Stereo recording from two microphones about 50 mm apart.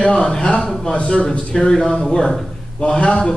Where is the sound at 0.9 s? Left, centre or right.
Left.